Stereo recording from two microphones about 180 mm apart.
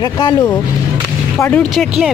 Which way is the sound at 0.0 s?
25° left (ahead or behind).